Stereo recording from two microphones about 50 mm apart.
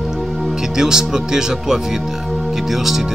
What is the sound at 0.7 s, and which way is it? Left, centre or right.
Speech, centre.